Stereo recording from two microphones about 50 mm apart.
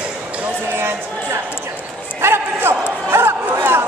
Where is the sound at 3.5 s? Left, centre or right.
Right.